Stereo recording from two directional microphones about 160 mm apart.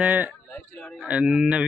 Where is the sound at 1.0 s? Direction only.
5° right (ahead or behind).